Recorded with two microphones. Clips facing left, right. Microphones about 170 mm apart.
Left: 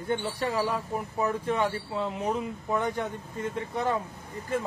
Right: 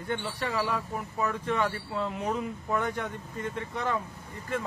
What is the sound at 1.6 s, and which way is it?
Speech, 20° left (ahead or behind).